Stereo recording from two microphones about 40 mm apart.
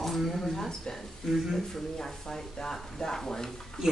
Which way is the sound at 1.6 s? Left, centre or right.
Centre.